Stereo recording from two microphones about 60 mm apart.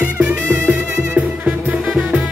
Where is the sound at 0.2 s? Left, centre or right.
Right.